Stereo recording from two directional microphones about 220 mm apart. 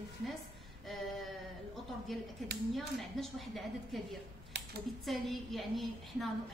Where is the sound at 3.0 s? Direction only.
Centre (ahead or behind).